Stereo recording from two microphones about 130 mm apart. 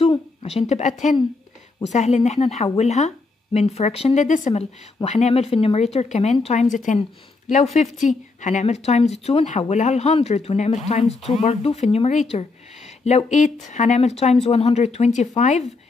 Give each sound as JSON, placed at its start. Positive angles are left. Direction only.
{"t": 0.0, "sound": "a sound", "side_deg": 45}
{"t": 1.8, "sound": "speech", "side_deg": 60}
{"t": 5.9, "sound": "a woman's voice", "side_deg": 60}